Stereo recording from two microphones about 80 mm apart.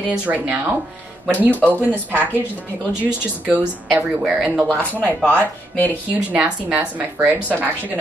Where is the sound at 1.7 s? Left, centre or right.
Right.